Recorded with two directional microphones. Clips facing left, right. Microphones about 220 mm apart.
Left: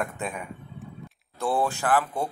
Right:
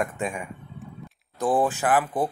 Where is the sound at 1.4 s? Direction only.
15° right (ahead or behind).